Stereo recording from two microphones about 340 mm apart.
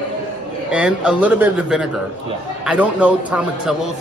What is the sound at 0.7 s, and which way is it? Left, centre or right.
A man's voice, centre.